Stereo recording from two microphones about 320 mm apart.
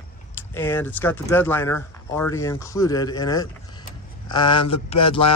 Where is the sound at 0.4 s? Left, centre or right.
Centre.